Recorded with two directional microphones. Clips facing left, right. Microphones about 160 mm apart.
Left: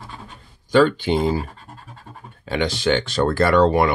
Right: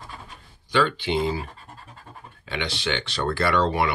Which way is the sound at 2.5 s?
45° left (ahead or behind).